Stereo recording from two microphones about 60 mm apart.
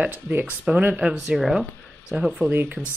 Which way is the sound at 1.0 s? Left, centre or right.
Centre.